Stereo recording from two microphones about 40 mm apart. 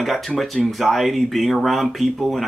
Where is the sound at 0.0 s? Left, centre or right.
Centre.